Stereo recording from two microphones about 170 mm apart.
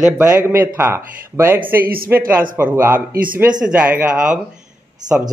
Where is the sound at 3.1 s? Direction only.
55° right (ahead or behind).